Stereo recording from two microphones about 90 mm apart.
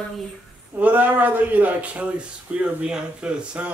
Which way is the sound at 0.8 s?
20° right (ahead or behind).